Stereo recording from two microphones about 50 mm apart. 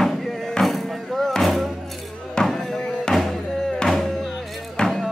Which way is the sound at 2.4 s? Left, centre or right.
Centre.